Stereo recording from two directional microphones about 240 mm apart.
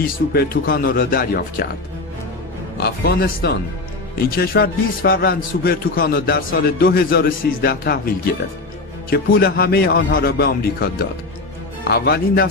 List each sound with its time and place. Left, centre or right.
0.0 s a man's voice: left
2.8 s a man's voice: left